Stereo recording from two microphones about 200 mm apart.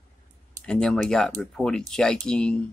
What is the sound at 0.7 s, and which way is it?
Speech, 5° left (ahead or behind).